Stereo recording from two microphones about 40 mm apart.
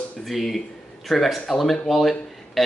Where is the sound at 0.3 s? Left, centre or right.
Centre.